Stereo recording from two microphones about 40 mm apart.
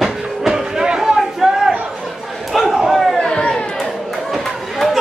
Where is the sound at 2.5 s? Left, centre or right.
Centre.